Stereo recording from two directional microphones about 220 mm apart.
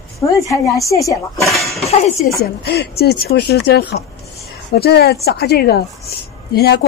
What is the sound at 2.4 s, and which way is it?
A woman's voice, 45° left (ahead or behind).